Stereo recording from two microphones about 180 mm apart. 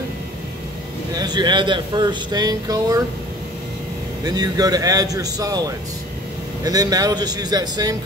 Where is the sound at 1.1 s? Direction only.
25° right (ahead or behind).